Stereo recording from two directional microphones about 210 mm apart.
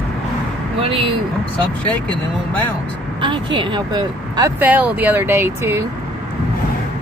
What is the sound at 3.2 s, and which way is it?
Speech, 20° right (ahead or behind).